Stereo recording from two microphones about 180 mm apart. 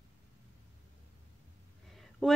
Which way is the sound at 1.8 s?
Centre (ahead or behind).